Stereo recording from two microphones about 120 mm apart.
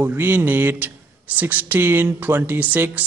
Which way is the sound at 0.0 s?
20° right (ahead or behind).